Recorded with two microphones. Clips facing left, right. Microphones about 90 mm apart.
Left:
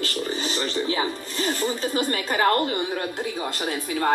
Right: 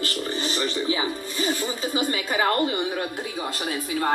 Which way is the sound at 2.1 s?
50° left (ahead or behind).